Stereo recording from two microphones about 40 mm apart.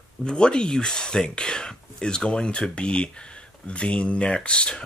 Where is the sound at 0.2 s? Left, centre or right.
Left.